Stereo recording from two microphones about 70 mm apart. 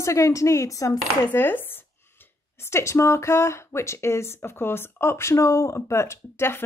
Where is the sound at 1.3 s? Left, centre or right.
Left.